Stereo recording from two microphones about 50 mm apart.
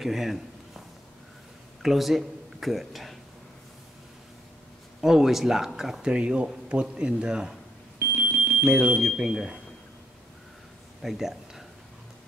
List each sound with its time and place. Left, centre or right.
0.0 s speech: centre
1.8 s speech: centre
5.0 s speech: centre
6.1 s speech: right
8.0 s smoke detector: right
8.6 s speech: right
9.0 s speech: centre
11.0 s a sound: centre